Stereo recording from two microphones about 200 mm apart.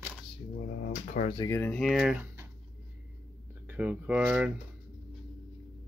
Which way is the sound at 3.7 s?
5° right (ahead or behind).